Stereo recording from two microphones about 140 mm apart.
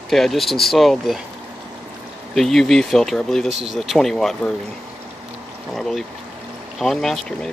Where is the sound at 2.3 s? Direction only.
Centre (ahead or behind).